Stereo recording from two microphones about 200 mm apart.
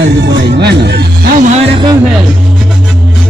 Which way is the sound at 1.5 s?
25° right (ahead or behind).